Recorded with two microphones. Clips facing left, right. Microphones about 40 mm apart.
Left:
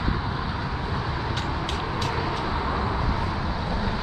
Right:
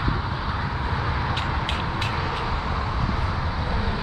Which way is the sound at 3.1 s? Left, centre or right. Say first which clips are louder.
Even; centre.